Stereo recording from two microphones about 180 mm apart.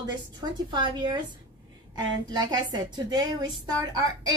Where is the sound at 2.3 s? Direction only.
25° right (ahead or behind).